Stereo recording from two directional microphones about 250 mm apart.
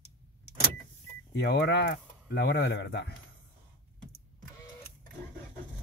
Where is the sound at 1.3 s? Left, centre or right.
Left.